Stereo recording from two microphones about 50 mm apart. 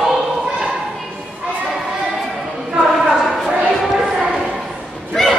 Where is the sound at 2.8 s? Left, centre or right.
Centre.